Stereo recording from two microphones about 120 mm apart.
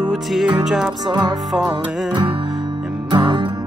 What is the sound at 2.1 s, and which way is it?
Music, 40° right (ahead or behind).